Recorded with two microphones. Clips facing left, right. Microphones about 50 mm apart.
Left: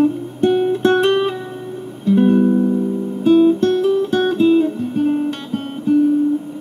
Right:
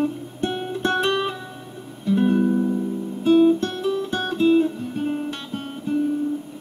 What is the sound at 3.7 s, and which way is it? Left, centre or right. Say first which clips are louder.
Guitar: left 9 dB; left.